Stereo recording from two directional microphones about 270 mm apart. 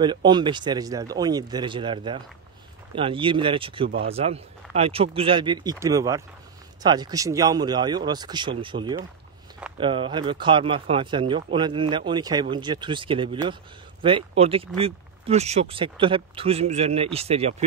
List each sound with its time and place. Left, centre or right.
0.0 s speech: centre